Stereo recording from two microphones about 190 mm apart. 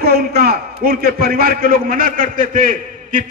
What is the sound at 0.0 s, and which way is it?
A man's voice, 55° right (ahead or behind).